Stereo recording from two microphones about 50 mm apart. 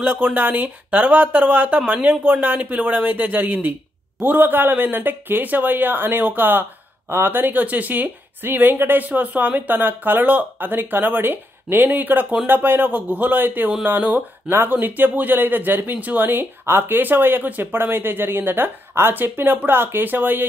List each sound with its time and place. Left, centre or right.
0.0 s speech: right
14.5 s speech: right